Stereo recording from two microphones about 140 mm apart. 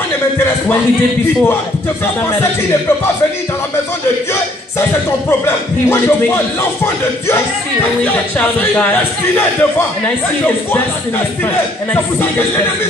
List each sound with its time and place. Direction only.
5.4 s speech: 15° left (ahead or behind)